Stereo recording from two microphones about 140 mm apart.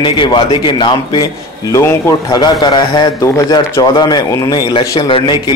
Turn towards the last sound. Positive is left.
turn(degrees=35)  # may be behind; listen again after turning